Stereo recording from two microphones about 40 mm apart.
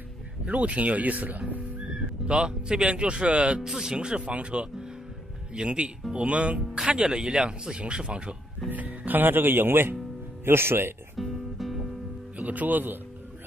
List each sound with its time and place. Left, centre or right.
0.5 s speech: right
2.2 s speech: right
3.6 s speech: centre
8.6 s speech: right
10.4 s speech: right
11.1 s music: centre
12.4 s speech: right